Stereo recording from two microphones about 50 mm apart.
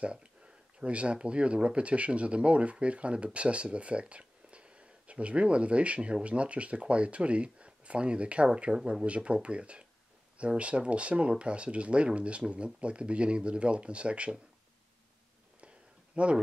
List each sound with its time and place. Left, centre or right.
0.0 s speech: right
16.1 s speech: right